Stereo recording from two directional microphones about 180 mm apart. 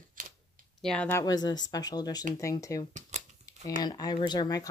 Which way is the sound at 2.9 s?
40° right (ahead or behind).